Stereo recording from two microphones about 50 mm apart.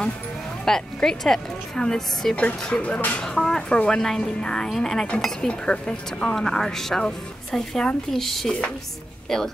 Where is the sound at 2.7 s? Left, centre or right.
Left.